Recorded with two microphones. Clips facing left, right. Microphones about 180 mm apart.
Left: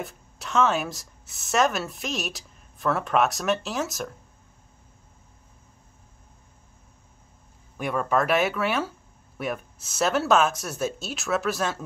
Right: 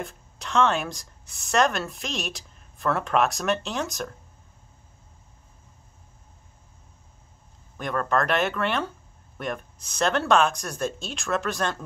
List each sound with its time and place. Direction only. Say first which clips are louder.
0.0 s speech: even; centre (ahead or behind)
7.7 s speech: left 1 dB; 10° left (ahead or behind)